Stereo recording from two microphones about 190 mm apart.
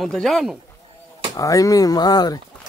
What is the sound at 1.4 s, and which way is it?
Speech, 15° left (ahead or behind).